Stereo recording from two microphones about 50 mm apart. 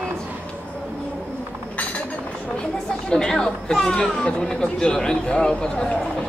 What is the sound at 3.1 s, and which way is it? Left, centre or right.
Speech, centre.